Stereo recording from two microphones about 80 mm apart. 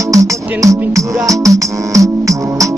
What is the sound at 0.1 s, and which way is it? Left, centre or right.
Music, right.